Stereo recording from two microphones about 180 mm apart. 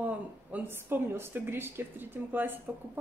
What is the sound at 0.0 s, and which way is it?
Speech, 10° right (ahead or behind).